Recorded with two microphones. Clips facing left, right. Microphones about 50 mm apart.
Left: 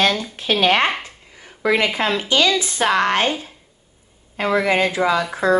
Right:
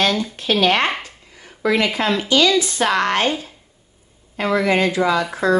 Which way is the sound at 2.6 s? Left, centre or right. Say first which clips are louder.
Even; left.